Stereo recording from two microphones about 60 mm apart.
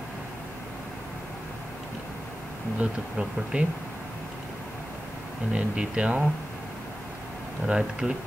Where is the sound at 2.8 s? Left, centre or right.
Centre.